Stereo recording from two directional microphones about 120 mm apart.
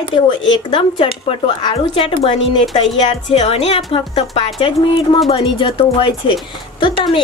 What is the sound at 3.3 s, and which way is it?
A woman's voice, 60° left (ahead or behind).